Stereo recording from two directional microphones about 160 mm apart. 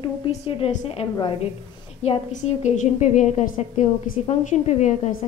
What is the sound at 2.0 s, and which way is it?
A woman's voice, 45° left (ahead or behind).